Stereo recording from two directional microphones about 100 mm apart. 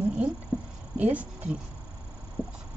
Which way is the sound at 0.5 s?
20° right (ahead or behind).